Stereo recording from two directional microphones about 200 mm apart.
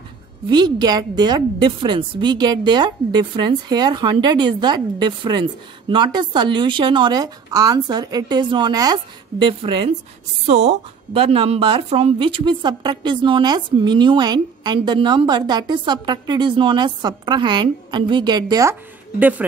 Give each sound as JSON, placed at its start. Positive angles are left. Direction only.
{"t": 0.5, "sound": "a woman's voice", "side_deg": -20}